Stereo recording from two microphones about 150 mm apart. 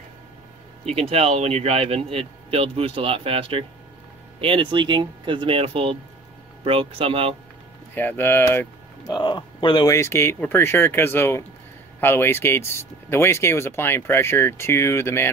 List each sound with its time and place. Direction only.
0.8 s speech: 40° right (ahead or behind)
7.9 s speech: 15° left (ahead or behind)
9.0 s a man's voice: 30° left (ahead or behind)
9.8 s speech: 20° left (ahead or behind)